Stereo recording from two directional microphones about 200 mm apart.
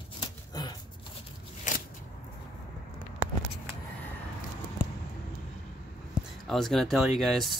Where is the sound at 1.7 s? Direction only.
40° left (ahead or behind).